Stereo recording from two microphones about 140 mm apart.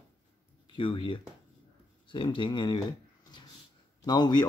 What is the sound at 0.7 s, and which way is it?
Speech, 35° left (ahead or behind).